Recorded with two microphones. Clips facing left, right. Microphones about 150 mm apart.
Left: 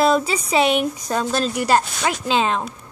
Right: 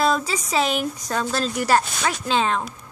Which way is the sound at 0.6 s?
65° left (ahead or behind).